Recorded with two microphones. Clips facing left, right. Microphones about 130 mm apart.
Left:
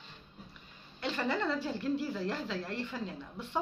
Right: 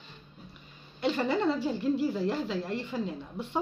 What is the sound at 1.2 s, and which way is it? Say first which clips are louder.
Speech: right 4 dB; 20° right (ahead or behind).